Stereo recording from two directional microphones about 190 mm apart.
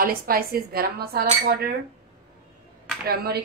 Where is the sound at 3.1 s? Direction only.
55° right (ahead or behind).